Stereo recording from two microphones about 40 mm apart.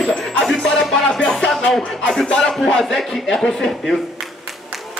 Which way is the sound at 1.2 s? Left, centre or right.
Centre.